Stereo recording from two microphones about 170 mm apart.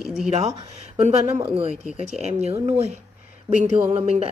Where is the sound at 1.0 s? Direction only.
40° right (ahead or behind).